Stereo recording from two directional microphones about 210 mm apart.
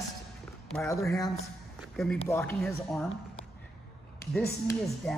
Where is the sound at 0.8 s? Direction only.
15° left (ahead or behind).